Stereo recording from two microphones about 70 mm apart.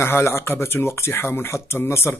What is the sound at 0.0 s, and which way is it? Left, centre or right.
Speech, left.